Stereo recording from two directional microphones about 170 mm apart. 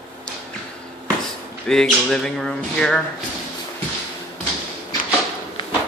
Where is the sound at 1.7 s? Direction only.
5° left (ahead or behind).